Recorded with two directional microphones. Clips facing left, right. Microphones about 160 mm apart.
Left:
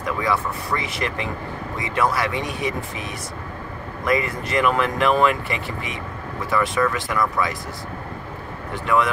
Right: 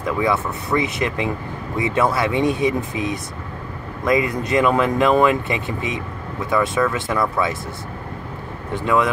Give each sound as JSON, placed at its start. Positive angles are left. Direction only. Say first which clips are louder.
{"t": 0.0, "sound": "speech", "louder": "right 3 dB", "side_deg": -20}
{"t": 8.7, "sound": "speech", "louder": "right 2 dB", "side_deg": -20}